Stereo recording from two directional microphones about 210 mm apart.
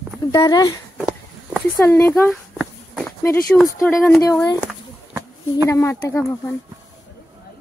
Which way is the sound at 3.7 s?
10° left (ahead or behind).